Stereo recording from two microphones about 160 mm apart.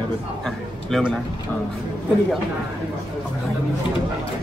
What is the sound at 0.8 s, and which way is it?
Speech, centre (ahead or behind).